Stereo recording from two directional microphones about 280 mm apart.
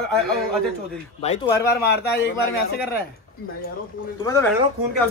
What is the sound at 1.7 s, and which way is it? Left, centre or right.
Speech, left.